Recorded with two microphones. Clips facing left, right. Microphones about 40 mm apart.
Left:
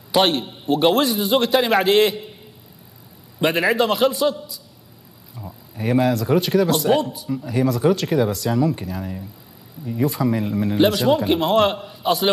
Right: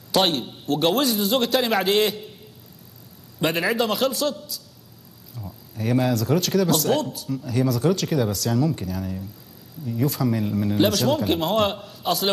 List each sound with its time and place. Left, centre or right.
0.1 s a man's voice: centre
3.3 s speech: centre
5.3 s a sound: centre
6.0 s a man's voice: centre